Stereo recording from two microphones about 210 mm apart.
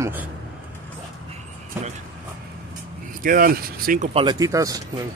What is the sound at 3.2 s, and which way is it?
Speech, 45° right (ahead or behind).